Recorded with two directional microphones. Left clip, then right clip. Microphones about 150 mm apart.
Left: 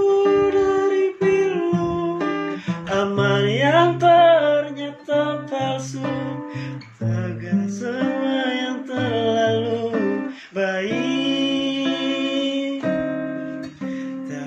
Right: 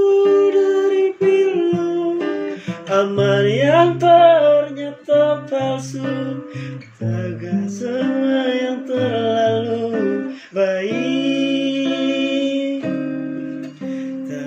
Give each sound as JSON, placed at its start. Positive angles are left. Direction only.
{"t": 0.4, "sound": "music", "side_deg": -20}
{"t": 2.9, "sound": "music", "side_deg": -15}
{"t": 7.6, "sound": "music", "side_deg": -20}